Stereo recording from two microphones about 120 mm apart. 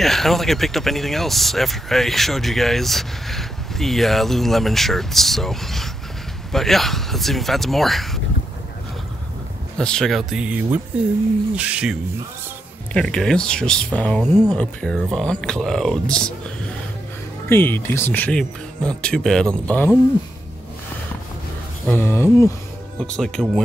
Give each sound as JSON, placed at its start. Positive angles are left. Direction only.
{"t": 0.0, "sound": "speech", "side_deg": 0}
{"t": 9.8, "sound": "speech", "side_deg": 5}
{"t": 12.9, "sound": "speech", "side_deg": 5}
{"t": 17.5, "sound": "speech", "side_deg": 20}
{"t": 21.8, "sound": "speech", "side_deg": 15}
{"t": 22.9, "sound": "speech", "side_deg": 5}